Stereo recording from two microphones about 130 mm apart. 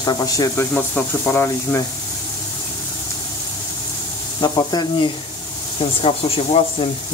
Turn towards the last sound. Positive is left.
turn(degrees=45)  # may be behind; listen again after turning